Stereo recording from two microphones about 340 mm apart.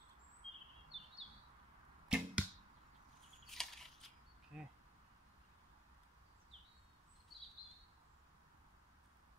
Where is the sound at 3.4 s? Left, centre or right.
Centre.